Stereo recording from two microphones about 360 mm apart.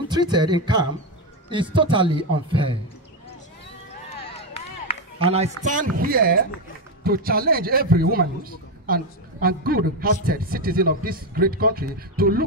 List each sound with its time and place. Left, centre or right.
0.1 s a man's voice: centre
4.2 s a sound: centre
5.2 s a woman's voice: centre